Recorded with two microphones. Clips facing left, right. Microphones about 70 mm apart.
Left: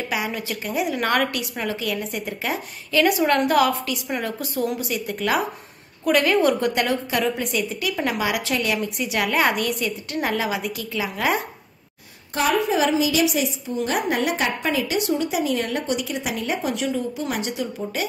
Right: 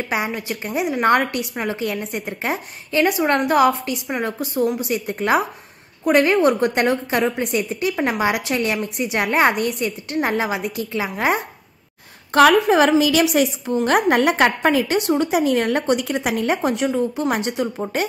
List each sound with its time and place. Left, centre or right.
0.4 s a woman's voice: right
7.4 s speech: right
8.0 s a woman's voice: right
8.7 s speech: right
9.1 s a woman's voice: right
12.4 s a woman's voice: right